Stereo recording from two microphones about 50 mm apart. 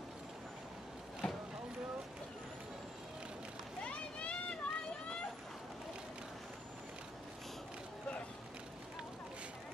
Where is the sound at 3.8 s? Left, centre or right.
Left.